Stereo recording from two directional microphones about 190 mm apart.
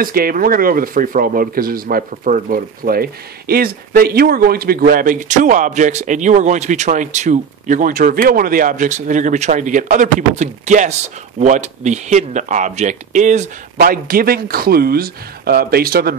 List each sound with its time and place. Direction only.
0.0 s speech: 50° right (ahead or behind)